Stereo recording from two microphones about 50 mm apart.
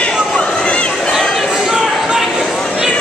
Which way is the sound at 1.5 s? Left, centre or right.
Centre.